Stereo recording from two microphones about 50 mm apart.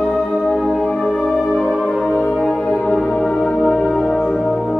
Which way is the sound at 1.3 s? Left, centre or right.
Centre.